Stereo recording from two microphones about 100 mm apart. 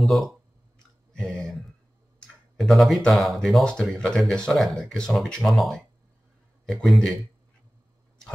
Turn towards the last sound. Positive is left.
turn(degrees=0)  # may be behind; listen again after turning